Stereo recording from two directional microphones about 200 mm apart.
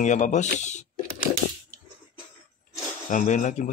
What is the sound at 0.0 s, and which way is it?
Speech, 35° left (ahead or behind).